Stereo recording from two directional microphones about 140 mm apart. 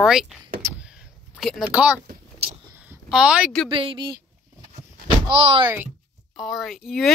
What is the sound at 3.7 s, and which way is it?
Speech, 40° right (ahead or behind).